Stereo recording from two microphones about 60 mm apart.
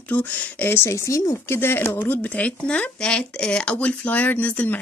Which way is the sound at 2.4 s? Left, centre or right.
Left.